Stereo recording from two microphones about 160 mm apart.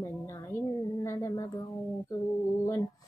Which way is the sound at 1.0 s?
20° left (ahead or behind).